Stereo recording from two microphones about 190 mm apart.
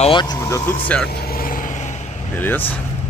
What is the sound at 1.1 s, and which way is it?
Vehicle, 55° left (ahead or behind).